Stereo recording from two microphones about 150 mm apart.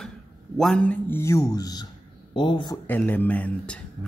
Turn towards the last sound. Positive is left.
turn(degrees=10)  # may be behind; listen again after turning